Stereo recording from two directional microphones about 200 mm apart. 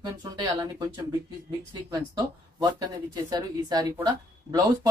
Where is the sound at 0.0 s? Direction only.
20° right (ahead or behind).